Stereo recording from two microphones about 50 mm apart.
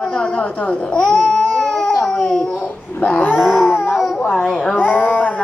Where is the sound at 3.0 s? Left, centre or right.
Left.